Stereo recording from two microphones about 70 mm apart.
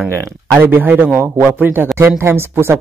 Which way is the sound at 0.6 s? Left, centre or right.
Right.